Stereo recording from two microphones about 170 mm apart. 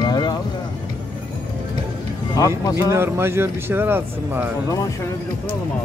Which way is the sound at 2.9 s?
15° right (ahead or behind).